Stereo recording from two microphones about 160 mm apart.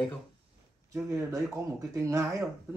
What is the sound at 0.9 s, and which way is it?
Speech, 20° right (ahead or behind).